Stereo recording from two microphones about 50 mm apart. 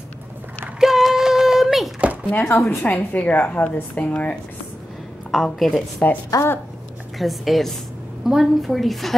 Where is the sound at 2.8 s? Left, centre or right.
Left.